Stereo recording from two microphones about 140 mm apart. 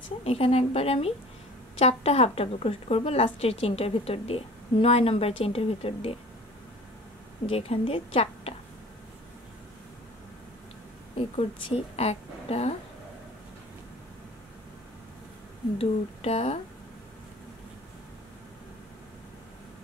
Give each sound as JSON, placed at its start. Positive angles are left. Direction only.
{"t": 0.2, "sound": "a woman's voice", "side_deg": 45}
{"t": 7.4, "sound": "a woman's voice", "side_deg": 45}
{"t": 11.1, "sound": "a woman's voice", "side_deg": 45}
{"t": 15.8, "sound": "a woman's voice", "side_deg": 45}